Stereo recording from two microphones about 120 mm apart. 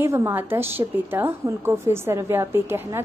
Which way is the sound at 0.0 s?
20° right (ahead or behind).